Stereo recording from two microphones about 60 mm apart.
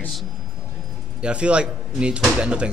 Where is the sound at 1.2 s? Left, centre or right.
Centre.